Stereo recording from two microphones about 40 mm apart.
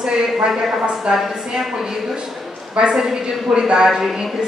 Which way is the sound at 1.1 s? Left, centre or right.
Centre.